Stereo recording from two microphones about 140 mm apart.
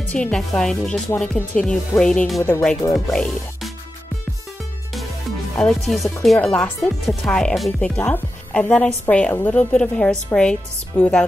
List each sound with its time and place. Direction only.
0.1 s speech: 5° left (ahead or behind)
5.6 s speech: centre (ahead or behind)